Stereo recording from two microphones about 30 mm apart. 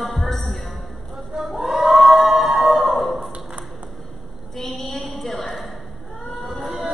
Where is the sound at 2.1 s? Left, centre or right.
Centre.